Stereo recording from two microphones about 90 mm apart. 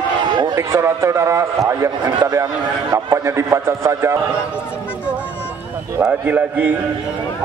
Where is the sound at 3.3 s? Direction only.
30° right (ahead or behind).